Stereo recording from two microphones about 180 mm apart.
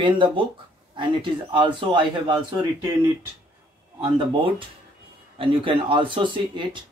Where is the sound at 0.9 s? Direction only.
25° right (ahead or behind).